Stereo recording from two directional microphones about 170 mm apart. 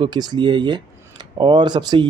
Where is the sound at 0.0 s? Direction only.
25° right (ahead or behind).